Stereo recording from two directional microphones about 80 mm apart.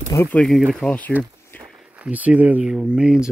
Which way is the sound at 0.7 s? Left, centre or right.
Centre.